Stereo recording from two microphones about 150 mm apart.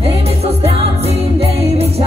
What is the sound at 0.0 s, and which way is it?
Music, 40° right (ahead or behind).